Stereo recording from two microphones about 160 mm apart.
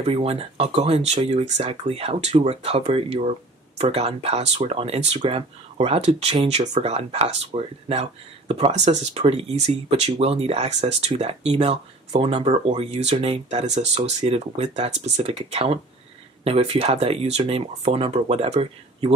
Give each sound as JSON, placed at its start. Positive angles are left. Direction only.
{"t": 0.0, "sound": "speech", "side_deg": -40}